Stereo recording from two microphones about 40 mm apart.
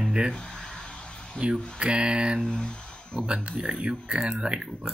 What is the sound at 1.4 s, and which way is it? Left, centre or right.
Speech, right.